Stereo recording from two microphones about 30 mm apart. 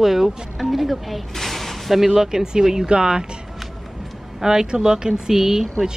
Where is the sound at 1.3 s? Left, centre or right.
Centre.